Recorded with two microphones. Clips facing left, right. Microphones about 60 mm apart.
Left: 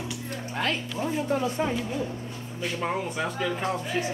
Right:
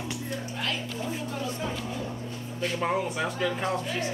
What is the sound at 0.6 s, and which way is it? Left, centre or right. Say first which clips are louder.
Speech: left 6 dB; left.